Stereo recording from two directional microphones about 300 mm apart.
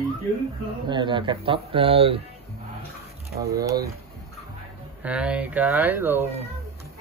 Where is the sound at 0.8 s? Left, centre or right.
Centre.